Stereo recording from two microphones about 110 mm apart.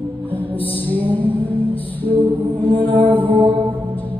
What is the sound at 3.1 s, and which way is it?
Music, 15° right (ahead or behind).